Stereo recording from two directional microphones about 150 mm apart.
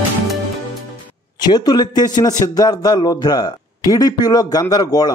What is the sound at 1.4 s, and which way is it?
Speech, 25° left (ahead or behind).